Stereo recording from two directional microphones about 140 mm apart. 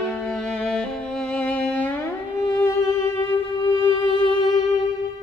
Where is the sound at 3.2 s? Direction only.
30° left (ahead or behind).